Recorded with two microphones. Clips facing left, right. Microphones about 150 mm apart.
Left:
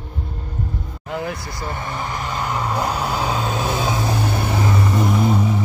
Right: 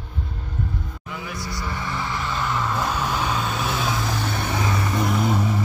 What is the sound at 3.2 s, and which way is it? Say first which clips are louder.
Vehicle: left 3 dB; 35° left (ahead or behind).